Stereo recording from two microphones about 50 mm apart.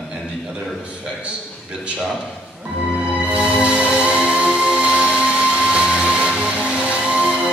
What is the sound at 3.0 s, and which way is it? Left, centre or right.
Music, right.